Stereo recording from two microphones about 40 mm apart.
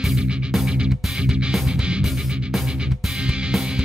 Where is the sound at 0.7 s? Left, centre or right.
Right.